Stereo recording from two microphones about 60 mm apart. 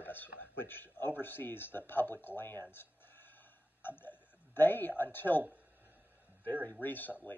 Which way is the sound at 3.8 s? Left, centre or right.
Left.